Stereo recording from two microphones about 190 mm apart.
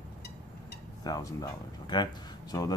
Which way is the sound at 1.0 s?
20° left (ahead or behind).